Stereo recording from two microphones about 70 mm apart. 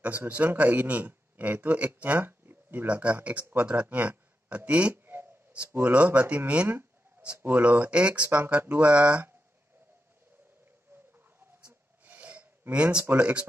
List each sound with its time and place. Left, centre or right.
0.0 s a man's voice: right
11.6 s gasp: right
13.0 s speech: right